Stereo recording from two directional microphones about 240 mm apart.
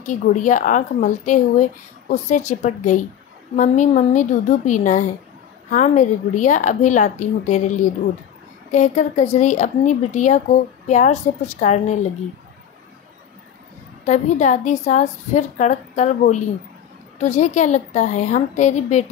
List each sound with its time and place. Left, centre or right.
0.0 s speech: left
8.7 s speech: left
14.0 s speech: left